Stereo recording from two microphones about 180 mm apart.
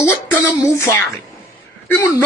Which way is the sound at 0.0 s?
15° left (ahead or behind).